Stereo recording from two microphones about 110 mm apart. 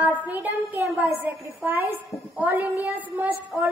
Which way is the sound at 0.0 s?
15° right (ahead or behind).